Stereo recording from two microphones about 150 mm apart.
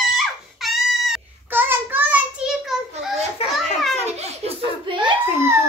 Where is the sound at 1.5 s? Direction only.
15° right (ahead or behind).